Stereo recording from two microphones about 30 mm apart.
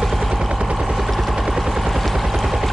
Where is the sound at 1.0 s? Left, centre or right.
Centre.